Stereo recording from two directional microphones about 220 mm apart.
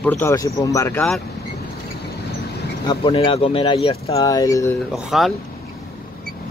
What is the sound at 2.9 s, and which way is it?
Speech, 25° left (ahead or behind).